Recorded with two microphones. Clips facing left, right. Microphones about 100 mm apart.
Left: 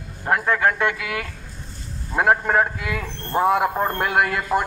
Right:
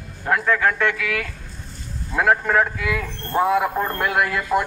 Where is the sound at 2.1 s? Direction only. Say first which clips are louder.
Even; 25° left (ahead or behind).